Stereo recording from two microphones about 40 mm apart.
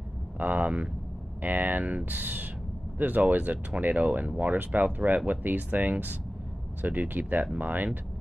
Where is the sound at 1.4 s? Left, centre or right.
Right.